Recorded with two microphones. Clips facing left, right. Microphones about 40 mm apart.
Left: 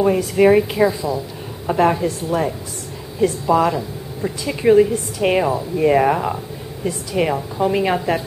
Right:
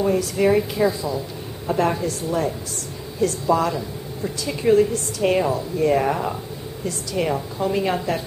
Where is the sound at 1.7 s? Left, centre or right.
Left.